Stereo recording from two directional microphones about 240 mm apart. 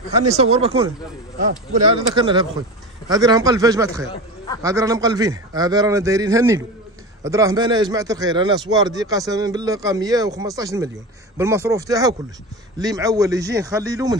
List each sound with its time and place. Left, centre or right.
0.4 s speech: right
2.0 s speech: right